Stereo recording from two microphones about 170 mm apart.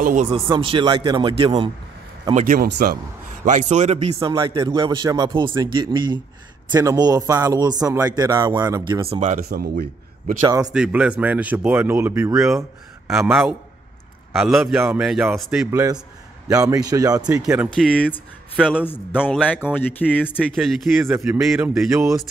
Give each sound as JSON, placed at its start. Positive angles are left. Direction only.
{"t": 0.0, "sound": "speech", "side_deg": -50}
{"t": 0.3, "sound": "a man's voice", "side_deg": -30}
{"t": 2.3, "sound": "speech", "side_deg": -55}
{"t": 3.4, "sound": "speech", "side_deg": -45}
{"t": 4.3, "sound": "a man's voice", "side_deg": -25}
{"t": 9.2, "sound": "a man's voice", "side_deg": -55}
{"t": 10.4, "sound": "a man's voice", "side_deg": -20}
{"t": 10.7, "sound": "speech", "side_deg": -5}
{"t": 13.1, "sound": "a man's voice", "side_deg": 0}
{"t": 15.7, "sound": "a man's voice", "side_deg": -20}
{"t": 17.6, "sound": "a man's voice", "side_deg": 5}